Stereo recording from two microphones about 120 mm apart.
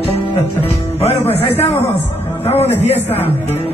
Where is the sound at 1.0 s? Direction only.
60° left (ahead or behind).